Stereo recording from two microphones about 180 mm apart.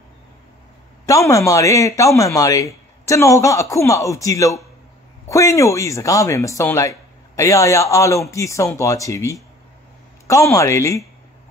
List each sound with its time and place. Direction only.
1.0 s speech: 15° left (ahead or behind)